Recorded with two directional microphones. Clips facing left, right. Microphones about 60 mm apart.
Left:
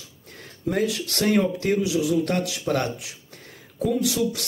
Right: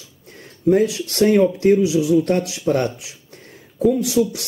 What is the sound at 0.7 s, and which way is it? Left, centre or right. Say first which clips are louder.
A man's voice: right 8 dB; centre.